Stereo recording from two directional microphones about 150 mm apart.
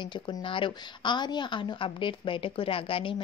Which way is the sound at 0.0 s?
30° left (ahead or behind).